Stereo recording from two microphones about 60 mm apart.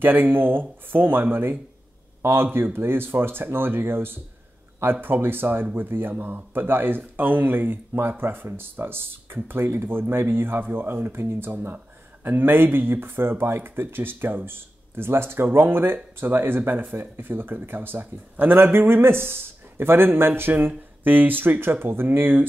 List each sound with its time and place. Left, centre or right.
0.0 s speech: right